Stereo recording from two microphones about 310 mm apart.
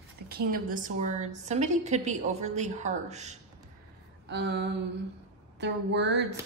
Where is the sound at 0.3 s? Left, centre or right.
Right.